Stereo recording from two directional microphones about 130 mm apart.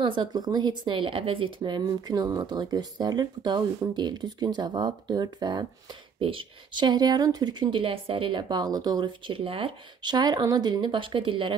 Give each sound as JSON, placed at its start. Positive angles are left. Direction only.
{"t": 0.0, "sound": "speech", "side_deg": -35}